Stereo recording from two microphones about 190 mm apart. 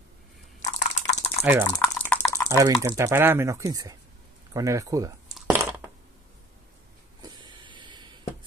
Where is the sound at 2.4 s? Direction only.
15° right (ahead or behind).